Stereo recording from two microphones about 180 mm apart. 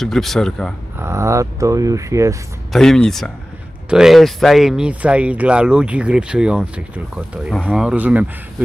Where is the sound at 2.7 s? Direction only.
Centre (ahead or behind).